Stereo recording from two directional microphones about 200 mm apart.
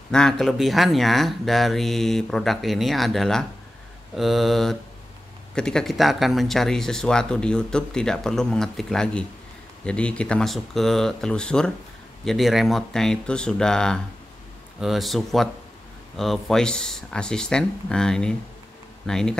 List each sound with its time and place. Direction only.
0.1 s speech: 5° left (ahead or behind)